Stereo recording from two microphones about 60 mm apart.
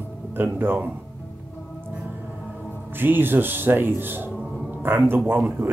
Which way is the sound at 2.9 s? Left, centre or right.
Right.